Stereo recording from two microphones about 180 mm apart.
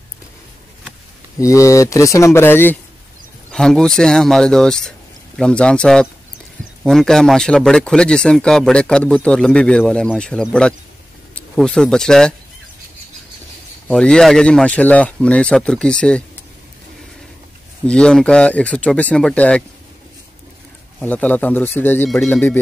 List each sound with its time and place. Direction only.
1.4 s a man's voice: 15° left (ahead or behind)
13.8 s a man's voice: 5° left (ahead or behind)
17.8 s a man's voice: 5° left (ahead or behind)
21.0 s speech: 10° left (ahead or behind)